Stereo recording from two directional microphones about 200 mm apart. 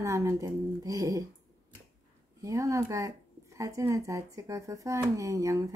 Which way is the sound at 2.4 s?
15° right (ahead or behind).